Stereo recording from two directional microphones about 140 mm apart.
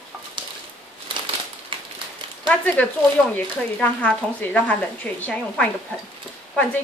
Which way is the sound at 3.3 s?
10° left (ahead or behind).